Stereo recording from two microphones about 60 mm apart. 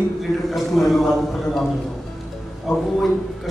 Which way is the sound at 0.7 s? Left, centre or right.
Centre.